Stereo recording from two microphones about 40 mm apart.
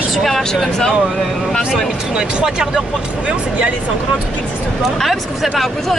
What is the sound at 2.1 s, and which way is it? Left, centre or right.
Speech, centre.